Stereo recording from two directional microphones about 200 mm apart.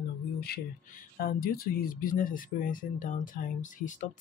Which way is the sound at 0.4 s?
50° left (ahead or behind).